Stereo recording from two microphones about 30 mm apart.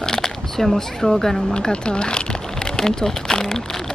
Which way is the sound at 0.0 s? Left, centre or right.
Centre.